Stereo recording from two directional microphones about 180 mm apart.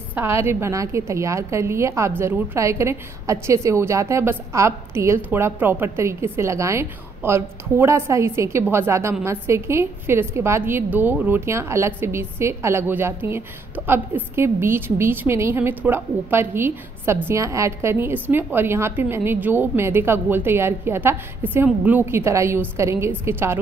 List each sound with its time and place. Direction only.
0.1 s a woman's voice: 15° right (ahead or behind)